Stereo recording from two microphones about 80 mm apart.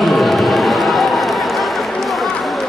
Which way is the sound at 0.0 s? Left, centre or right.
Centre.